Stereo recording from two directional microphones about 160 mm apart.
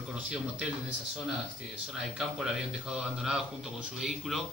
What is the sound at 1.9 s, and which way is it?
A man's voice, 5° right (ahead or behind).